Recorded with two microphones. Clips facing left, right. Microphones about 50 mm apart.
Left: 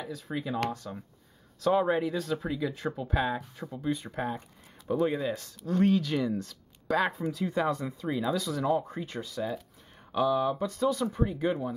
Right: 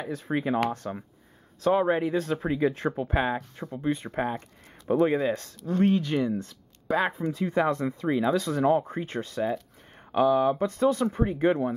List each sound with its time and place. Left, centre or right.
0.0 s speech: right
1.7 s speech: centre
2.4 s speech: right
5.2 s speech: right
5.7 s speech: centre
7.0 s speech: centre
7.3 s speech: right
10.1 s speech: right
10.7 s speech: right